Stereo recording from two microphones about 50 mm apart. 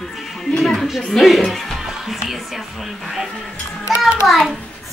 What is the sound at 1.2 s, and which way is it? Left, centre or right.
Speech, centre.